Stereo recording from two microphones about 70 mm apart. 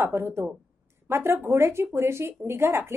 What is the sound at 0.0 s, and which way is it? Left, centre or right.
A woman's voice, right.